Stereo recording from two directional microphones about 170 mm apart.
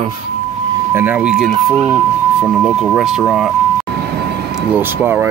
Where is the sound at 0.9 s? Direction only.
10° right (ahead or behind).